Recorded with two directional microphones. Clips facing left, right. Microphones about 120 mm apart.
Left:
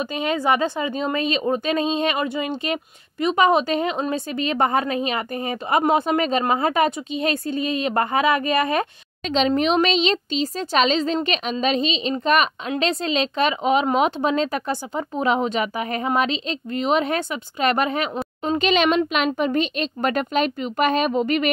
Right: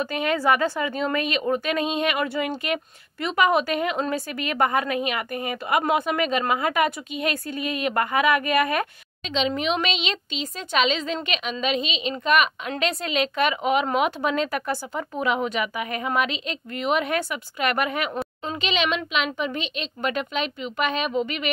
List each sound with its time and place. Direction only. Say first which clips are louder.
0.0 s a woman's voice: even; 20° left (ahead or behind)
9.3 s a woman's voice: left 5 dB; 40° left (ahead or behind)
18.6 s a woman's voice: left 6 dB; 45° left (ahead or behind)